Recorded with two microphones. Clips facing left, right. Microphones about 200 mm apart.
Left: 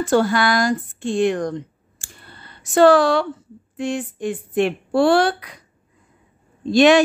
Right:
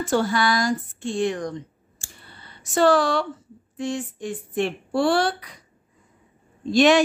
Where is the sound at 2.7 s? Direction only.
65° left (ahead or behind).